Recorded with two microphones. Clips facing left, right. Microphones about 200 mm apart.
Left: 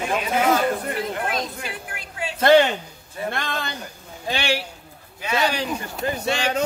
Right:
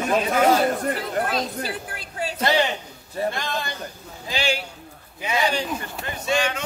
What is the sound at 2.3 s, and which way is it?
A man's voice, 55° left (ahead or behind).